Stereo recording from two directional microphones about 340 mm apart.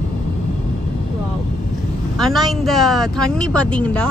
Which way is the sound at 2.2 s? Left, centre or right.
Centre.